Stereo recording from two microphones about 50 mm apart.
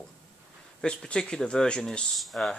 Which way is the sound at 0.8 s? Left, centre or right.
Centre.